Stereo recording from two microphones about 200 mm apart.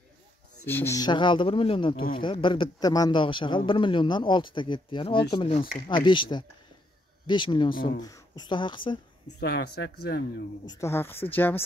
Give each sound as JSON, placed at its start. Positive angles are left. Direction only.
{"t": 0.7, "sound": "a man's voice", "side_deg": 10}
{"t": 9.4, "sound": "speech", "side_deg": 55}
{"t": 10.6, "sound": "speech", "side_deg": 15}